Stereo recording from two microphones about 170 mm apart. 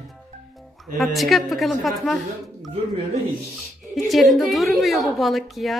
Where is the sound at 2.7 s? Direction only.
35° right (ahead or behind).